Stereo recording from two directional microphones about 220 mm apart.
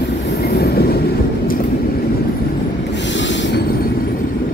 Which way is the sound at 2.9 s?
55° left (ahead or behind).